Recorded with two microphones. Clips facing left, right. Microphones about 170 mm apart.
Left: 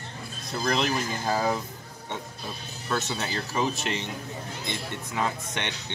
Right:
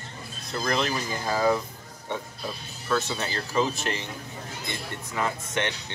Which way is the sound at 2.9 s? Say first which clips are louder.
Right 2 dB; 20° left (ahead or behind).